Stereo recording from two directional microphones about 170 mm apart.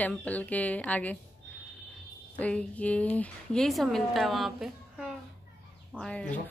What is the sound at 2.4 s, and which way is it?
A woman's voice, 10° left (ahead or behind).